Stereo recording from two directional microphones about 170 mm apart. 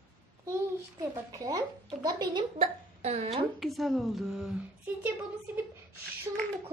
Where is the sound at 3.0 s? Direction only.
40° right (ahead or behind).